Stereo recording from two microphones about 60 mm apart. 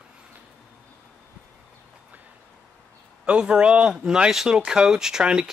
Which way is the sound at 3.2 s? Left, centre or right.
Centre.